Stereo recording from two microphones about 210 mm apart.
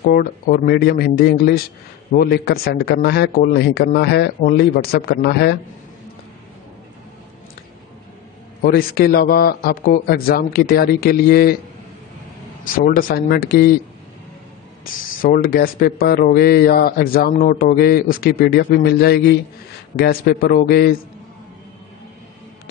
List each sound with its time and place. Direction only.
0.0 s speech: 45° left (ahead or behind)
8.6 s speech: 45° left (ahead or behind)
12.7 s speech: 40° left (ahead or behind)
15.2 s speech: 45° left (ahead or behind)